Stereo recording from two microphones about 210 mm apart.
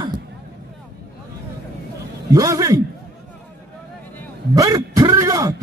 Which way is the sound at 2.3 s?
15° right (ahead or behind).